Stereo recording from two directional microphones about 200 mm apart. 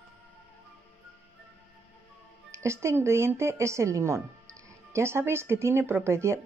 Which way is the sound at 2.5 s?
15° right (ahead or behind).